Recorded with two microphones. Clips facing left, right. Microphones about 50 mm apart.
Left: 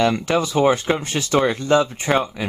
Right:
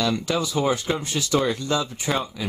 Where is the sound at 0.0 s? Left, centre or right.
Left.